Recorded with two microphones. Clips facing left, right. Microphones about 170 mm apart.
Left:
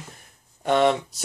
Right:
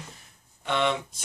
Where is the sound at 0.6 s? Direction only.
40° left (ahead or behind).